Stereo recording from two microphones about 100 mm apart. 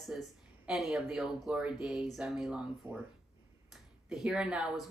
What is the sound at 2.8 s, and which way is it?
Speech, 20° right (ahead or behind).